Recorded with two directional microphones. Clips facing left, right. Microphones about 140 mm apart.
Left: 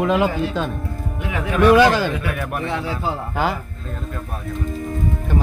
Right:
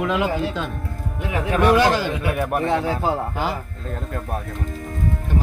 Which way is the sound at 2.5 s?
45° right (ahead or behind).